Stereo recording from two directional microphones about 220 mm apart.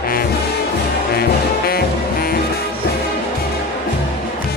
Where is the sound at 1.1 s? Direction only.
45° left (ahead or behind).